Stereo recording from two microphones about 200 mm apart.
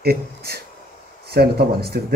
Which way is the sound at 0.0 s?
50° right (ahead or behind).